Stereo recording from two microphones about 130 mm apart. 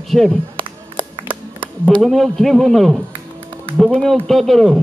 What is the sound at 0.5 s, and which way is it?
Music, 40° right (ahead or behind).